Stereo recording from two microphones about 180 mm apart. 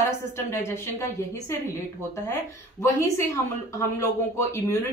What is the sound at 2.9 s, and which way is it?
A woman's voice, 15° left (ahead or behind).